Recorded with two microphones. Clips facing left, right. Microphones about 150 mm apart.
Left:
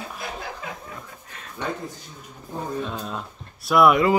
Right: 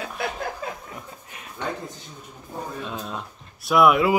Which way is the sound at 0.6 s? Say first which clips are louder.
Right 3 dB; 35° right (ahead or behind).